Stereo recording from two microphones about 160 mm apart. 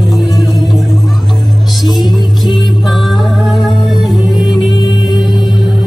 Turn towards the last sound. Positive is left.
turn(degrees=0)  # may be behind; listen again after turning